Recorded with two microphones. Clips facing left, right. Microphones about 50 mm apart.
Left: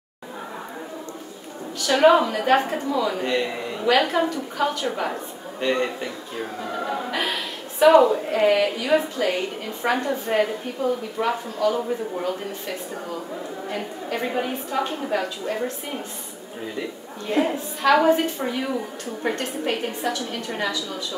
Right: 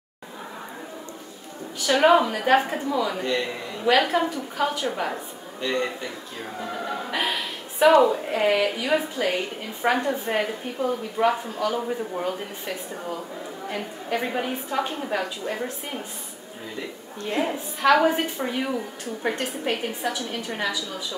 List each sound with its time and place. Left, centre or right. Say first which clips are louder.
2.0 s a woman's voice: left 2 dB; centre
3.3 s a man's voice: left 2 dB; centre
3.8 s a woman's voice: left 1 dB; centre
5.6 s a man's voice: left 3 dB; centre
6.4 s speech: left 2 dB; centre
14.2 s a woman's voice: left 2 dB; centre
17.3 s a woman's voice: left 4 dB; centre